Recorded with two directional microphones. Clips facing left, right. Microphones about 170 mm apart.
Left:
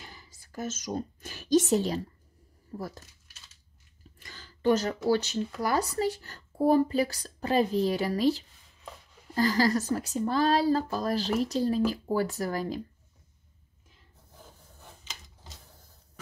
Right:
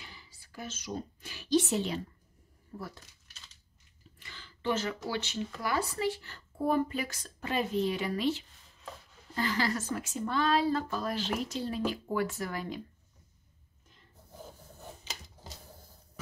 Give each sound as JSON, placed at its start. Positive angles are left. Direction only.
{"t": 0.0, "sound": "whispering", "side_deg": 45}
{"t": 2.7, "sound": "speech", "side_deg": 40}
{"t": 4.2, "sound": "speech", "side_deg": 40}